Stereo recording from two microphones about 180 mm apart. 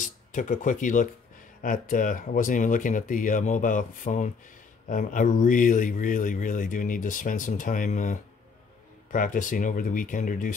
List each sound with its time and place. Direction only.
0.0 s a man's voice: 45° left (ahead or behind)